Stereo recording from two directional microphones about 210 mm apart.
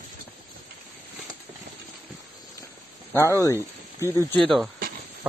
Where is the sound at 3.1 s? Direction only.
15° left (ahead or behind).